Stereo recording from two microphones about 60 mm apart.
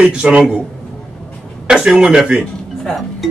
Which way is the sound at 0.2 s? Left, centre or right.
Centre.